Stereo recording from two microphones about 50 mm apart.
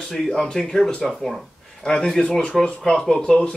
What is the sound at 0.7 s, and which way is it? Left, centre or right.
Speech, centre.